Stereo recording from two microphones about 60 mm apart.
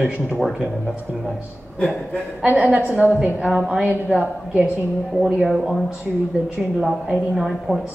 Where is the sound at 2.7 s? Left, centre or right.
Right.